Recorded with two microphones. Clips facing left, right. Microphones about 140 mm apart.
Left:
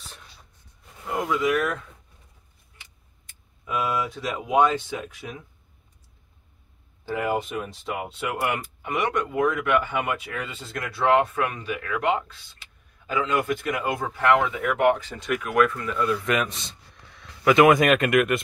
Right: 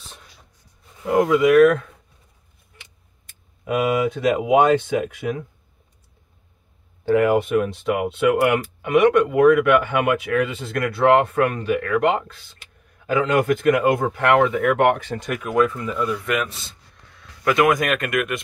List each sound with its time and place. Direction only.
1.0 s speech: 90° right; by 1.9 s 70° right (ahead or behind)
3.6 s speech: 70° right (ahead or behind)
7.1 s speech: 65° right (ahead or behind); by 15.5 s 45° right (ahead or behind)
15.5 s speech: 20° right (ahead or behind)
15.9 s speech: 10° right (ahead or behind)